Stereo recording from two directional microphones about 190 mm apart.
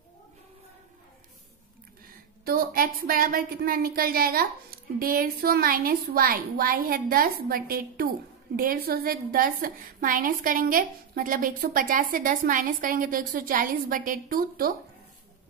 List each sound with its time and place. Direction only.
2.4 s a woman's voice: 50° right (ahead or behind)